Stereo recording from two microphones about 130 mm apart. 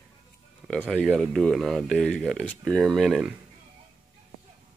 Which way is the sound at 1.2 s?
Centre (ahead or behind).